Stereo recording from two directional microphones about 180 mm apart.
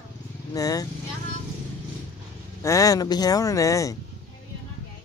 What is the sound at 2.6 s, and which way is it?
Speech, 20° left (ahead or behind).